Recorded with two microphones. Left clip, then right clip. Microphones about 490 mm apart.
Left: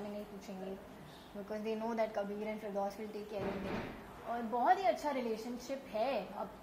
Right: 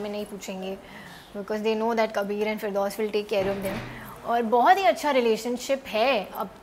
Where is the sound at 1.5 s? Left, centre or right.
Right.